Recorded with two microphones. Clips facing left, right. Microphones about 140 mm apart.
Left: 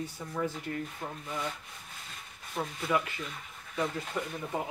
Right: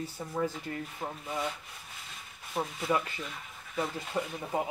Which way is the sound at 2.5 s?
Centre (ahead or behind).